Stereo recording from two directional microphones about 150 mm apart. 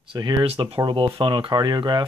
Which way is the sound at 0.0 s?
30° right (ahead or behind).